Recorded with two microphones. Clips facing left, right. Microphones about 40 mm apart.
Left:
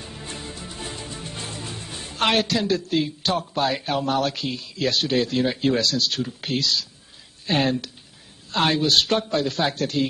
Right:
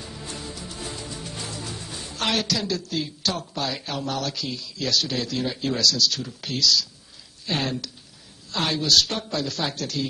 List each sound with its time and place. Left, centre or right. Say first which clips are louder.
0.3 s music: left 1 dB; left
0.7 s a woman's voice: left 1 dB; left